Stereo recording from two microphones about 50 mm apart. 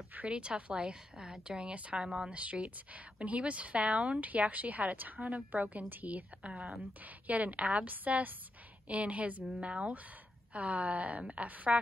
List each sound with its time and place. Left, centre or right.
0.3 s a woman's voice: right
2.3 s a woman's voice: right